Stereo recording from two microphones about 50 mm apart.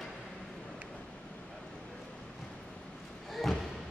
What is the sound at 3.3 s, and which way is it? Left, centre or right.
Thump, centre.